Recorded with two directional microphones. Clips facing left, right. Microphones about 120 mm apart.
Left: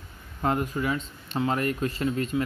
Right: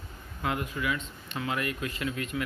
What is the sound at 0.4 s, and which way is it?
Speech, 40° left (ahead or behind).